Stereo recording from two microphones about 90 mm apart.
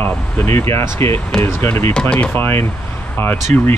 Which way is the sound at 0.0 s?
25° left (ahead or behind).